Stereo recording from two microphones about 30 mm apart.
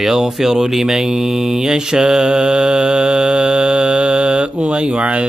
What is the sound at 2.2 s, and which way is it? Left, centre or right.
Music, right.